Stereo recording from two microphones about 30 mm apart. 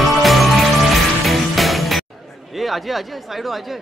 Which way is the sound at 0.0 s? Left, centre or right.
Centre.